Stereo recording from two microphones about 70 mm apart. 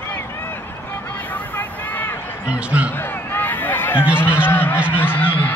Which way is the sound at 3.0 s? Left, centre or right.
Left.